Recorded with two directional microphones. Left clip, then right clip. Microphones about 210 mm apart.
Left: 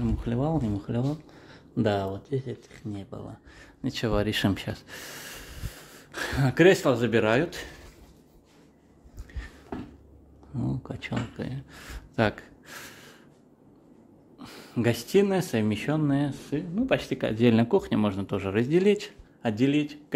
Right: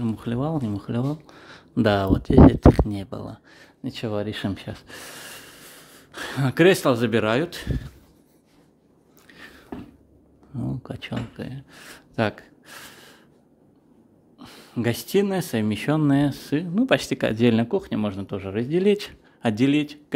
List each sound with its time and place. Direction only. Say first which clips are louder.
0.0 s speech: right 2 dB; 20° right (ahead or behind)
3.8 s speech: left 1 dB; centre (ahead or behind)
4.8 s gasp: right 2 dB; 15° right (ahead or behind)
6.4 s speech: right 2 dB; 25° right (ahead or behind)
9.3 s a sound: right 3 dB; 20° right (ahead or behind)
10.5 s speech: right 1 dB; 10° right (ahead or behind)
14.4 s speech: right 1 dB; 15° right (ahead or behind); by 16.8 s 35° right (ahead or behind)
16.8 s speech: right 5 dB; 20° right (ahead or behind)
18.9 s a man's voice: right 3 dB; 25° right (ahead or behind)